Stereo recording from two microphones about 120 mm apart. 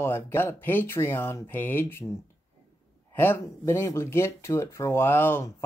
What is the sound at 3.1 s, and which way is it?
Speech, 20° left (ahead or behind).